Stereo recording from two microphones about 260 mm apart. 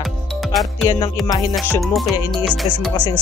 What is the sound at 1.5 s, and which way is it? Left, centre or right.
Speech, centre.